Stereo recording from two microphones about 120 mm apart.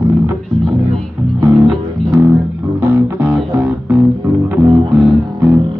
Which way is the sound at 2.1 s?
20° right (ahead or behind).